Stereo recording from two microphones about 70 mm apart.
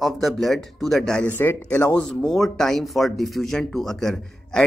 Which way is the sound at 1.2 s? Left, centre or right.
Left.